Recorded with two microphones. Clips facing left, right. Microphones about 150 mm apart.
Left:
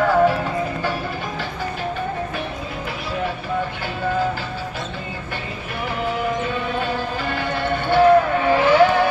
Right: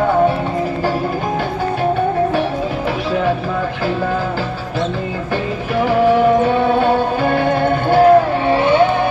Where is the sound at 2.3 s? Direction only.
85° right.